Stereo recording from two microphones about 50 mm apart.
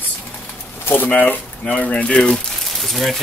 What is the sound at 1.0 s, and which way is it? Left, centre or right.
Speech, left.